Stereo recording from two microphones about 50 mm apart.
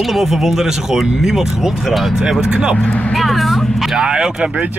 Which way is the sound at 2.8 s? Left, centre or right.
Left.